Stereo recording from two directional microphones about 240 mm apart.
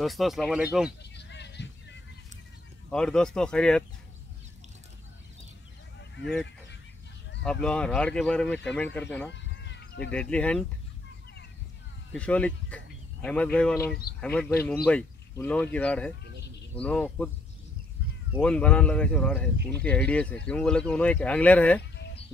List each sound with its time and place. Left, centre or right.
0.0 s speech: centre
1.1 s a sound: left
2.9 s speech: centre
7.6 s speech: centre
9.3 s a sound: left
10.1 s speech: centre
12.1 s speech: centre
18.3 s speech: centre